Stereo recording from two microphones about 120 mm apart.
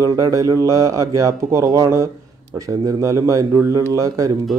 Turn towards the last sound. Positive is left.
turn(degrees=-25)  # may be behind; listen again after turning